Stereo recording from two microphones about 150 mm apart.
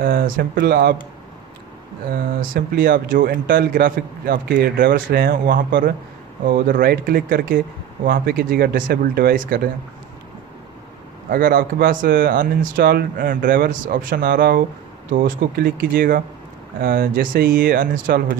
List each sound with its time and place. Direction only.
0.0 s speech: 70° right (ahead or behind); by 0.9 s 90° right
2.4 s a man's voice: 80° right
11.2 s a man's voice: 70° right (ahead or behind)